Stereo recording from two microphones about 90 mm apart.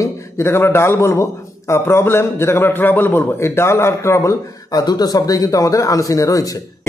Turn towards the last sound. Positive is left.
turn(degrees=40)  # may be behind; listen again after turning